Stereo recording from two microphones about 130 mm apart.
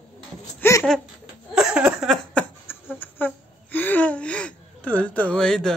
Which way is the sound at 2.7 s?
15° left (ahead or behind).